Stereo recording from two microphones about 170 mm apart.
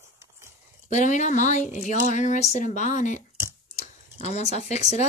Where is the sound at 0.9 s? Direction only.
45° left (ahead or behind).